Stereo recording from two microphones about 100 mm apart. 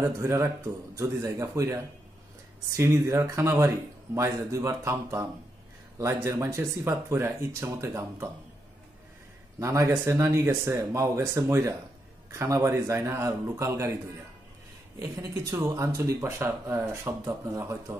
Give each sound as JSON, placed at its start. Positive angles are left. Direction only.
{"t": 0.0, "sound": "speech", "side_deg": -25}
{"t": 9.6, "sound": "speech", "side_deg": -30}
{"t": 15.0, "sound": "speech", "side_deg": -30}